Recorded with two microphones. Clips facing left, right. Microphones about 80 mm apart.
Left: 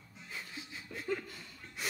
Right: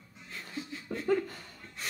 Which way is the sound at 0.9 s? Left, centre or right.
Right.